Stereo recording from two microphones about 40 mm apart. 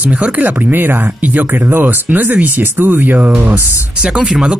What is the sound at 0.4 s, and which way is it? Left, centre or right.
Speech, right.